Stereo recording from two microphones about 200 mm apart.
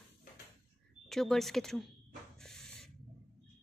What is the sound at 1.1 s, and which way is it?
Speech, centre (ahead or behind).